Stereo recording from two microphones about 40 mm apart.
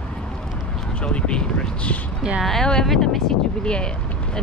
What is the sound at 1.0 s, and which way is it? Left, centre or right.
A woman's voice, left.